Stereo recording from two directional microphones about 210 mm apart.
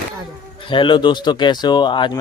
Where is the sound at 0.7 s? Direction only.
25° left (ahead or behind).